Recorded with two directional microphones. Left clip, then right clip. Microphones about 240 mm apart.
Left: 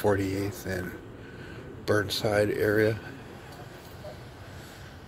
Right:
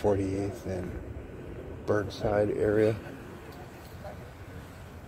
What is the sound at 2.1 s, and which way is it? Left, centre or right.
Speech, centre.